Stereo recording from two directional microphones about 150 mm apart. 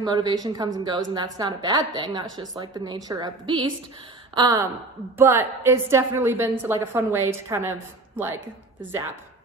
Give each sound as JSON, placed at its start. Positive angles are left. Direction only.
{"t": 0.0, "sound": "a woman's voice", "side_deg": -25}